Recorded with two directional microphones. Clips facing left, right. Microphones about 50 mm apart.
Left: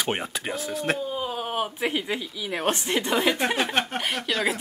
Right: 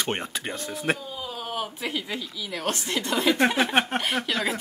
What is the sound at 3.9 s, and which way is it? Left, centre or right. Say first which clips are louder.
Speech: right 2 dB; centre.